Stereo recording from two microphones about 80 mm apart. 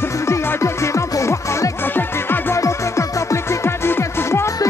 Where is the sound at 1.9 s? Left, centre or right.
Left.